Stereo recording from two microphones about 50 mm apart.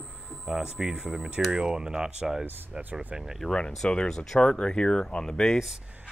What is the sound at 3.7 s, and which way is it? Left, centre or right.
Speech, centre.